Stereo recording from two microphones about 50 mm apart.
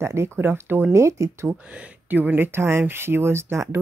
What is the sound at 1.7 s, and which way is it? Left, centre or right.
Speech, right.